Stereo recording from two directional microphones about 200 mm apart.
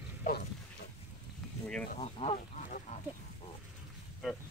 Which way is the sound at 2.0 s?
30° left (ahead or behind).